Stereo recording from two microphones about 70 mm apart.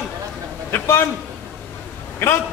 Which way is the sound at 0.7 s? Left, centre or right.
Left.